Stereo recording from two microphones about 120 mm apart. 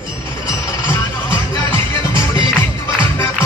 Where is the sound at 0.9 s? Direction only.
20° left (ahead or behind).